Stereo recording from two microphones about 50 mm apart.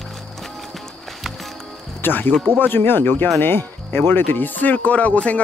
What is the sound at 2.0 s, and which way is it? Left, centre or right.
Speech, left.